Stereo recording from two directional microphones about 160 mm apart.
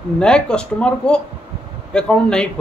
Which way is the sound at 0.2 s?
5° left (ahead or behind).